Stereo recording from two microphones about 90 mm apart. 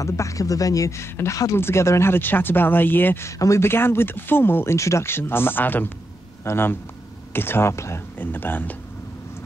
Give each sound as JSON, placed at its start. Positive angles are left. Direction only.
{"t": 0.0, "sound": "speech", "side_deg": 35}
{"t": 3.3, "sound": "speech", "side_deg": 35}